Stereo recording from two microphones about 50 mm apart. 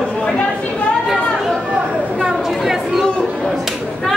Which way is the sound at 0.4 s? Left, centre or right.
Left.